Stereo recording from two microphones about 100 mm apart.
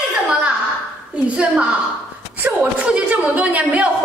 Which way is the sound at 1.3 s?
10° right (ahead or behind).